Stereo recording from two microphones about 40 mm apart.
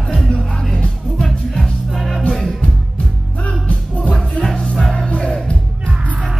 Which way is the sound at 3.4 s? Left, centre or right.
Left.